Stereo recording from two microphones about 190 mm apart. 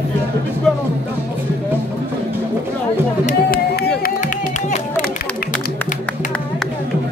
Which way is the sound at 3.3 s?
55° left (ahead or behind).